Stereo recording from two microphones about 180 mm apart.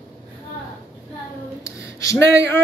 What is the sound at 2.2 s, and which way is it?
Speech, 75° right (ahead or behind).